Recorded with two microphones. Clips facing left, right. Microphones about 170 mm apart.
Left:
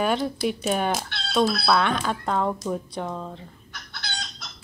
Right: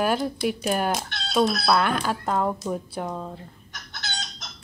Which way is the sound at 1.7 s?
5° right (ahead or behind).